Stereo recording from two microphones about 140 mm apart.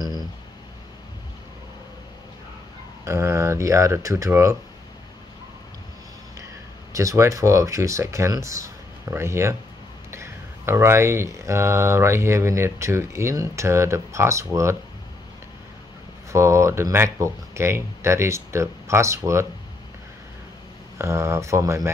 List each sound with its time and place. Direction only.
3.1 s speech: 20° right (ahead or behind)
6.9 s speech: 20° right (ahead or behind)
16.3 s speech: 20° right (ahead or behind)
21.0 s speech: 20° right (ahead or behind)